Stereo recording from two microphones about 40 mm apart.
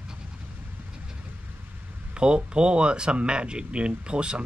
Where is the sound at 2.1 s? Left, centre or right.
Right.